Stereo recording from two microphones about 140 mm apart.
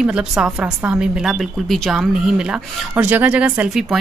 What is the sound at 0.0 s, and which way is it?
A woman's voice, 5° right (ahead or behind).